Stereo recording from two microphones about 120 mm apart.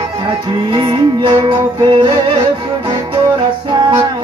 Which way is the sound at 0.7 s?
45° right (ahead or behind).